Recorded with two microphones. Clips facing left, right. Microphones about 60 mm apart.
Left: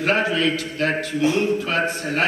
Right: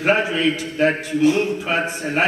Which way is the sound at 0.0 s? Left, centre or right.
Centre.